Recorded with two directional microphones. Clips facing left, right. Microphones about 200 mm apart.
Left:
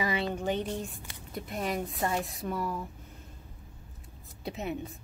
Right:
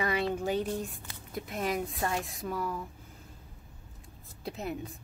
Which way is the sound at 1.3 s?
Centre (ahead or behind).